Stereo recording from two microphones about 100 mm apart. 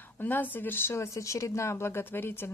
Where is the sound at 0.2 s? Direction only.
20° left (ahead or behind).